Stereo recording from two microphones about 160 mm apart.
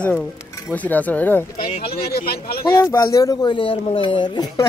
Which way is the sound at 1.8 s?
75° left (ahead or behind).